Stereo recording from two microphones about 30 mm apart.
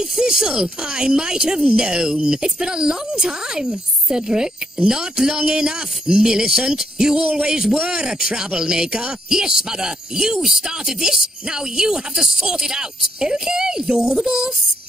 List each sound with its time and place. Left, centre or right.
0.0 s speech: centre
7.7 s speech: right
8.0 s speech: right